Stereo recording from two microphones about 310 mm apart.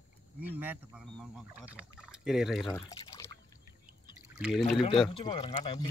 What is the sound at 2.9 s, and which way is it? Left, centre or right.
Speech, centre.